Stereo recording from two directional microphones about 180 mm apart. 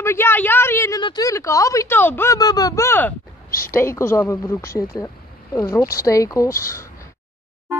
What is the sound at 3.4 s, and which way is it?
Speech, 55° left (ahead or behind).